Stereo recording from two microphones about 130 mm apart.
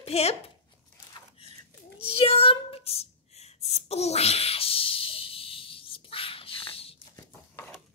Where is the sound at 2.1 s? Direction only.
50° left (ahead or behind).